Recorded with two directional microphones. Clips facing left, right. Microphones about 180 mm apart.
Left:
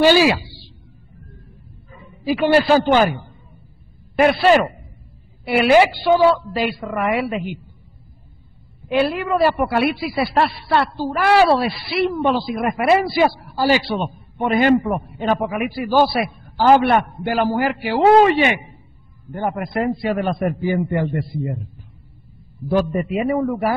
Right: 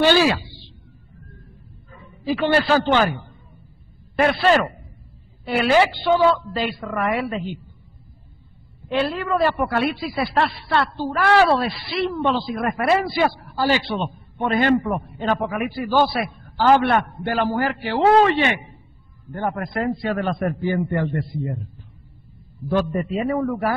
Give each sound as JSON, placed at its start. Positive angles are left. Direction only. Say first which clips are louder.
{"t": 0.0, "sound": "a woman's voice", "louder": "left 3 dB", "side_deg": 10}
{"t": 1.9, "sound": "a man's voice", "louder": "left 2 dB", "side_deg": 15}
{"t": 8.8, "sound": "a man's voice", "louder": "left 4 dB", "side_deg": 10}
{"t": 22.7, "sound": "a man's voice", "louder": "left 3 dB", "side_deg": 10}